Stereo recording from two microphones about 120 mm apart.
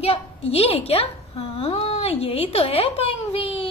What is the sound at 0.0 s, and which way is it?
A woman's voice, 55° left (ahead or behind).